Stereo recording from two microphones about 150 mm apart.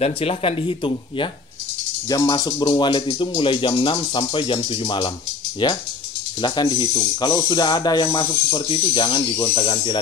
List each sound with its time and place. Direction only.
0.0 s speech: 40° left (ahead or behind)